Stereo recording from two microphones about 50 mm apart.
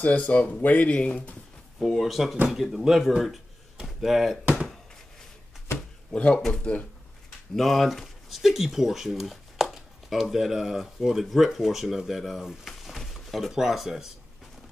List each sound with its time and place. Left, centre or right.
0.3 s speech: left
1.8 s speech: centre
6.1 s speech: left
7.5 s speech: centre
12.6 s a sound: centre